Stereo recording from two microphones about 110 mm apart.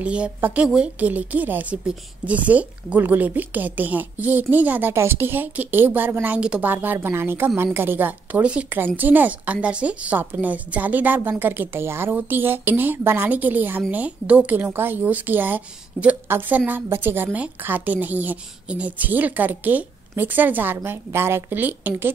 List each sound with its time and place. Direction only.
0.0 s a woman's voice: 10° right (ahead or behind)